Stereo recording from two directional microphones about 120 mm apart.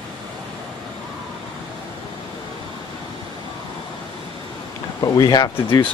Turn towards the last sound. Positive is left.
turn(degrees=40)  # may be behind; listen again after turning